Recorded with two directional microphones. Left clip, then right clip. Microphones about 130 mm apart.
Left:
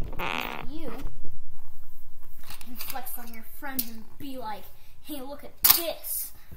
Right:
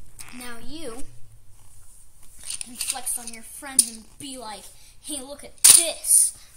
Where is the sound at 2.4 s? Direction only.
Centre (ahead or behind).